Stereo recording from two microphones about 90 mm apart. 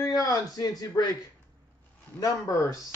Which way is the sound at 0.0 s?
45° left (ahead or behind).